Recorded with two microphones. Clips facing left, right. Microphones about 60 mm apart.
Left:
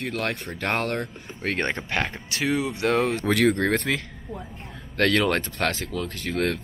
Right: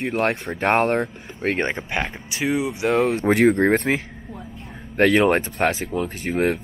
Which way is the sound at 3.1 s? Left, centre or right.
Right.